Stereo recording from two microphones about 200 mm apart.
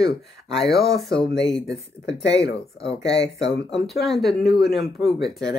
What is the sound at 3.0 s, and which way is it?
Speech, 60° left (ahead or behind).